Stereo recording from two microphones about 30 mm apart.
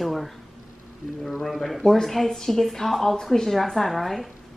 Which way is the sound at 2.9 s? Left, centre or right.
Centre.